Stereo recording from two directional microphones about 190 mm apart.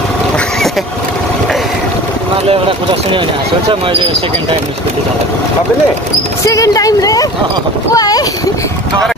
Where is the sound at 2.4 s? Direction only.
30° right (ahead or behind).